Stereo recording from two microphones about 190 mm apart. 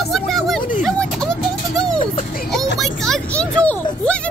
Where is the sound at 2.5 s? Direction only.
Centre (ahead or behind).